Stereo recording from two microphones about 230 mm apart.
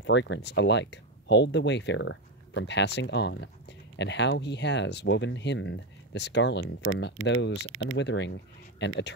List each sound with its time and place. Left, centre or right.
0.0 s speech: left